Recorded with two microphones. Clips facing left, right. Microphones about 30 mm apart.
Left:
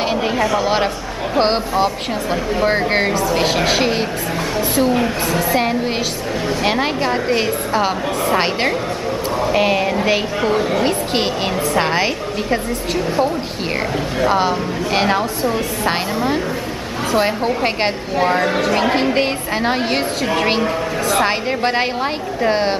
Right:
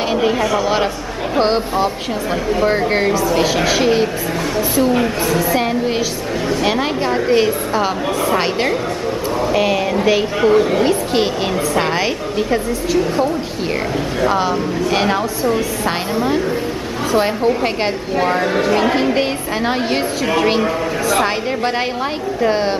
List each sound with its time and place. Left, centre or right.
0.1 s a woman's voice: centre
1.4 s a woman's voice: left
4.9 s a woman's voice: centre
14.3 s a woman's voice: centre
17.1 s a woman's voice: centre